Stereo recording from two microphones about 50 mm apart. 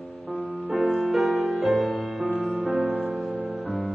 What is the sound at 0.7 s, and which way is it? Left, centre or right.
Music, centre.